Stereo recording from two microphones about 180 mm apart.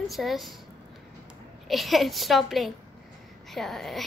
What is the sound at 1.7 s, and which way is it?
A woman's voice, centre (ahead or behind).